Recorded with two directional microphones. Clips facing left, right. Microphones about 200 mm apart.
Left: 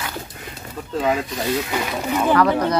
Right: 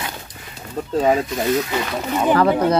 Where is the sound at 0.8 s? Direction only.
40° right (ahead or behind).